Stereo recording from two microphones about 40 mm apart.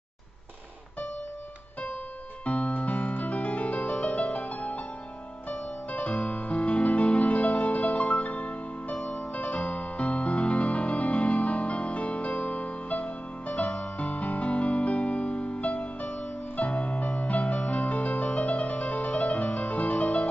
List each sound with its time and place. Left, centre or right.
2.4 s music: left